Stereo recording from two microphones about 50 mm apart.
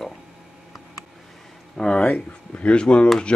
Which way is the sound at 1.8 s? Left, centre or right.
Centre.